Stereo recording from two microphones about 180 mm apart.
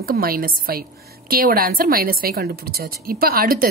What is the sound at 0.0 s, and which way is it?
A woman's voice, 55° right (ahead or behind).